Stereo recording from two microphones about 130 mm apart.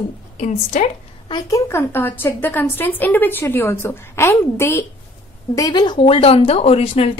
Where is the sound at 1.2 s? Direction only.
35° left (ahead or behind).